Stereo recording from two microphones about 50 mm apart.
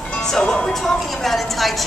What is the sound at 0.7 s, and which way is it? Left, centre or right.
A woman's voice, centre.